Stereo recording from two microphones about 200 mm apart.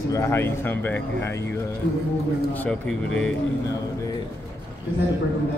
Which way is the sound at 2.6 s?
5° left (ahead or behind).